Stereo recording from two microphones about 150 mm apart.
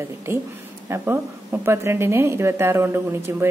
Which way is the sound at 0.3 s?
15° right (ahead or behind).